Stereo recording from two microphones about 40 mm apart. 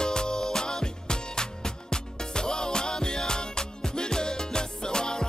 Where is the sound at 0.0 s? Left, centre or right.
Centre.